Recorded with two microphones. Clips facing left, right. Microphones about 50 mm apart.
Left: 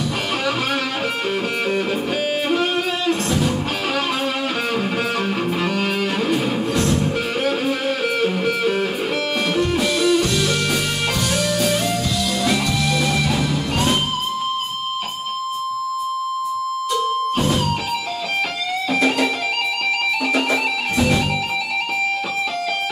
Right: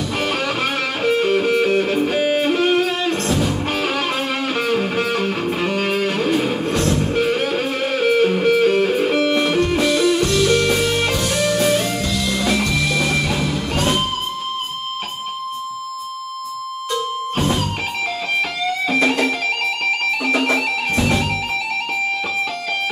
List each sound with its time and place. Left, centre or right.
1.0 s music: centre
5.9 s music: centre
8.0 s music: centre